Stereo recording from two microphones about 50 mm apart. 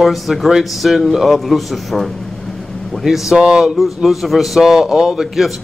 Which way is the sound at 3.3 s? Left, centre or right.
Centre.